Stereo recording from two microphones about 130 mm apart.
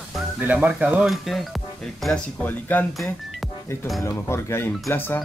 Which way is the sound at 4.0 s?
20° left (ahead or behind).